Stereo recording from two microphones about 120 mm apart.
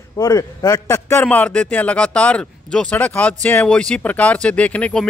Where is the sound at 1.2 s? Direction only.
10° left (ahead or behind).